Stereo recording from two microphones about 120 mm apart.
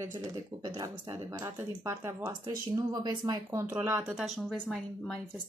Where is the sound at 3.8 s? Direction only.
20° right (ahead or behind).